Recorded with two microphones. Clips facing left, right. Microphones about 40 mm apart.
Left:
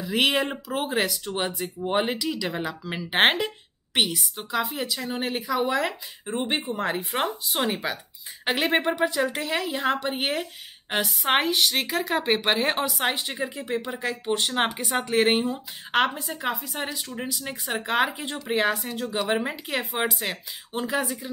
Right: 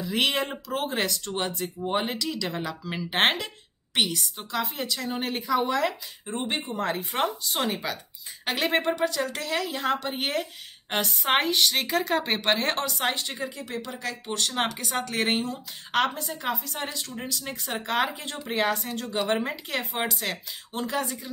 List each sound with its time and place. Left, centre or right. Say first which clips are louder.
0.0 s speech: left 3 dB; centre